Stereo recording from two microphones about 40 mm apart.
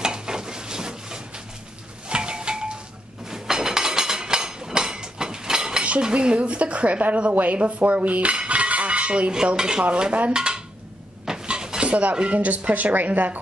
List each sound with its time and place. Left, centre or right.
0.0 s a sound: centre
5.9 s speech: right
8.4 s dishes: right
11.2 s cupboard open or close: right
11.8 s speech: right